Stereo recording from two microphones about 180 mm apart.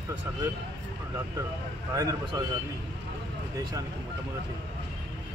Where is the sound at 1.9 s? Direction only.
20° right (ahead or behind).